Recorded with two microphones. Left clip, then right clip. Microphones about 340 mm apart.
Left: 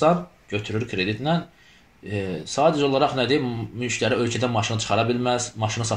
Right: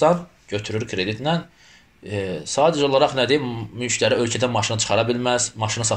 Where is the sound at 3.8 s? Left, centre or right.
Right.